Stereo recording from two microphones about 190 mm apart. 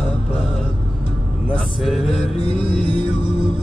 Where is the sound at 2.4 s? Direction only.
30° right (ahead or behind).